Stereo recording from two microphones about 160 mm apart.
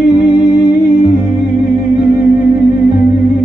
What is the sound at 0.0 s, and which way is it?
Music, 65° left (ahead or behind).